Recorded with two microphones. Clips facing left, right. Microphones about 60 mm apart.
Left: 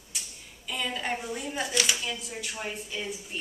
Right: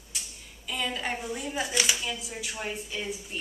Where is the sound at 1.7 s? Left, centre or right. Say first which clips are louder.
Left 1 dB; centre.